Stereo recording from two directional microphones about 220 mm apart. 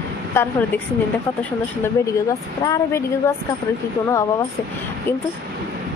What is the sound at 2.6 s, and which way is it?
Speech, 15° left (ahead or behind).